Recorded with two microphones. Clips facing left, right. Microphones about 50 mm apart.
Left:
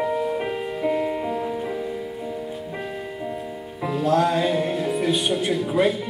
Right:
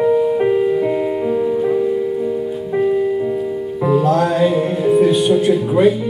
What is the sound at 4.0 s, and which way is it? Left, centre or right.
Music, right.